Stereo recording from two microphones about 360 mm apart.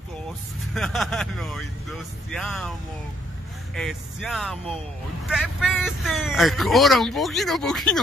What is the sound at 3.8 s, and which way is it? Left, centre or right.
Speech, centre.